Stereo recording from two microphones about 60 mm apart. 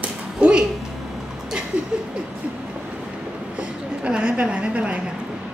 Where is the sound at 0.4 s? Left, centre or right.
Centre.